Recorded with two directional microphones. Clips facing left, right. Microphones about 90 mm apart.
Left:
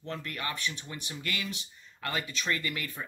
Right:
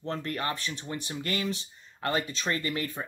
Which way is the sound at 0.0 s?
35° right (ahead or behind).